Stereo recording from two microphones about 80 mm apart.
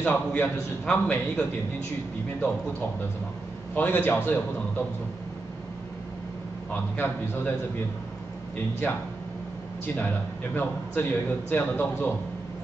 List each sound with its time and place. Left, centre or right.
0.0 s a man's voice: left
3.7 s a man's voice: left
6.7 s a man's voice: left
9.9 s a man's voice: left